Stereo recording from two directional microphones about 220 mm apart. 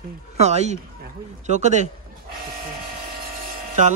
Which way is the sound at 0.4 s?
30° right (ahead or behind).